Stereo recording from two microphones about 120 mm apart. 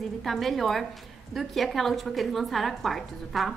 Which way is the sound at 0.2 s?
Centre (ahead or behind).